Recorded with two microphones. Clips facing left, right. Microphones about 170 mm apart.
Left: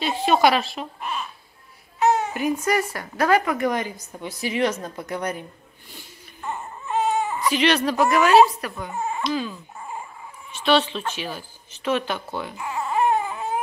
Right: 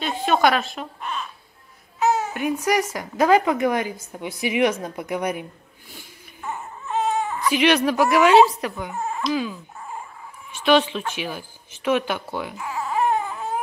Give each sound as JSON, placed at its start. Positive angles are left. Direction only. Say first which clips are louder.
{"t": 0.0, "sound": "a sound", "louder": "left 1 dB", "side_deg": 5}
{"t": 0.7, "sound": "speech", "louder": "even", "side_deg": 5}
{"t": 2.0, "sound": "babbling", "louder": "left 1 dB", "side_deg": 0}
{"t": 2.6, "sound": "a woman's voice", "louder": "right 1 dB", "side_deg": -15}
{"t": 4.8, "sound": "a sound", "louder": "right 3 dB", "side_deg": -15}
{"t": 7.5, "sound": "a woman's voice", "louder": "right 3 dB", "side_deg": -10}
{"t": 8.9, "sound": "speech", "louder": "even", "side_deg": 0}
{"t": 9.8, "sound": "dog", "louder": "left 1 dB", "side_deg": 5}
{"t": 10.5, "sound": "a woman's voice", "louder": "right 2 dB", "side_deg": -10}
{"t": 12.5, "sound": "baby cry", "louder": "left 2 dB", "side_deg": 0}